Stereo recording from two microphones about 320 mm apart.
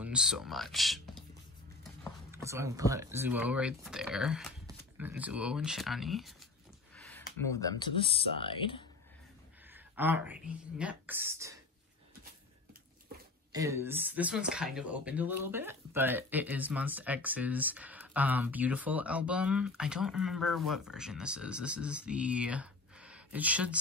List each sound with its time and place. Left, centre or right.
0.0 s speech: centre
2.3 s speech: centre
7.0 s a sound: centre
7.8 s speech: centre
9.7 s speech: centre
13.5 s speech: centre